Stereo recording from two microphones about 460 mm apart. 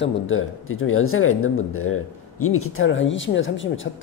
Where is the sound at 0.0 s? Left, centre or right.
Left.